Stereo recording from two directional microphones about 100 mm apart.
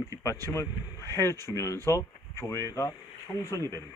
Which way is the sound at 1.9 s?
30° left (ahead or behind).